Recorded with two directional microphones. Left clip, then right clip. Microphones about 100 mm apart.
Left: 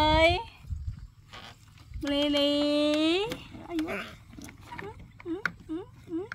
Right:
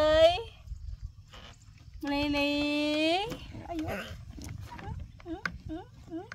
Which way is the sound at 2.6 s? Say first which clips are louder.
Left 3 dB; 35° right (ahead or behind).